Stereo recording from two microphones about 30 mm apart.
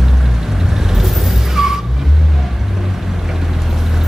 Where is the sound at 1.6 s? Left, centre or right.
Centre.